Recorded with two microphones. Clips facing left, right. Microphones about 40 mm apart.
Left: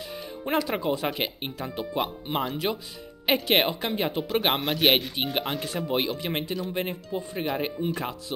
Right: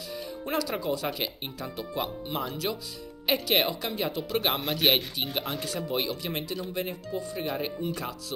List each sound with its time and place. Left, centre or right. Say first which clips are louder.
0.5 s speech: left 4 dB; left
4.6 s a man's voice: left 3 dB; centre
5.1 s speech: left 3 dB; centre
5.7 s speech: left 3 dB; left